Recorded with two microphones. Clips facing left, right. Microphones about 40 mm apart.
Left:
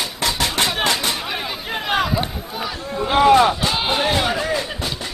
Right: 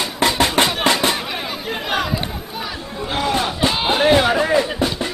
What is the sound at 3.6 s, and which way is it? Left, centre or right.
Music, centre.